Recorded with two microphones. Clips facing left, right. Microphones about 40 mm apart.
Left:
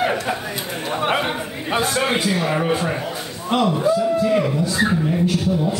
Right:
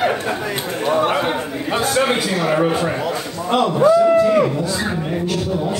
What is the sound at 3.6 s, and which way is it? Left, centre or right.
Speech, right.